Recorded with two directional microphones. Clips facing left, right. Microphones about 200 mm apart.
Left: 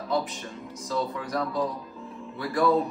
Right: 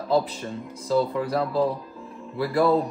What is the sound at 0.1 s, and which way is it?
Speech, 30° right (ahead or behind).